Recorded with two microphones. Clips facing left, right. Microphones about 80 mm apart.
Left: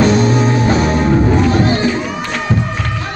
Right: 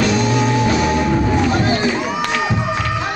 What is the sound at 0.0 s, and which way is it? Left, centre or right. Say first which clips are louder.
Music: left 4 dB; left.